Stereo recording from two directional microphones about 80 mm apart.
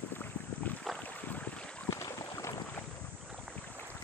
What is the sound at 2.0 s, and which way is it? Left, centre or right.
Boat, left.